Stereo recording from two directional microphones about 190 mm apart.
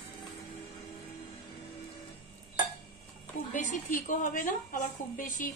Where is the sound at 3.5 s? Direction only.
40° left (ahead or behind).